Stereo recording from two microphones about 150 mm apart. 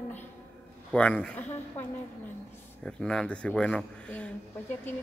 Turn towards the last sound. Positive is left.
turn(degrees=5)  # may be behind; listen again after turning